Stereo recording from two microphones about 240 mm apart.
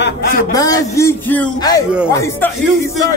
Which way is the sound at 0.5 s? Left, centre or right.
Centre.